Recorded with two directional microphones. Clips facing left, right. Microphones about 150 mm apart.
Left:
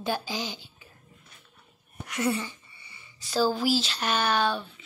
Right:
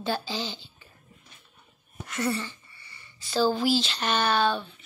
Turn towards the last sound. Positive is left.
turn(degrees=10)  # may be behind; listen again after turning